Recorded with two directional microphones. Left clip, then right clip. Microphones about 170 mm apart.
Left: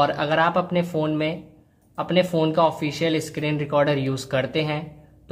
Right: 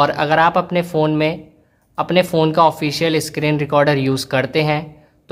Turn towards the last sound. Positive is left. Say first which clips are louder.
# right 7 dB
turn(degrees=-35)  # may be behind; listen again after turning